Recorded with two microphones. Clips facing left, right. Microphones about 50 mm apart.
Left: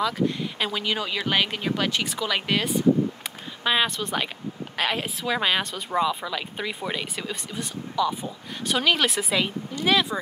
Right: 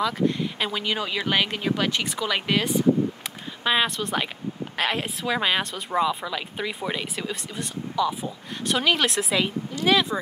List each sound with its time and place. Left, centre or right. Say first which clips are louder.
0.0 s a woman's voice: right 1 dB; centre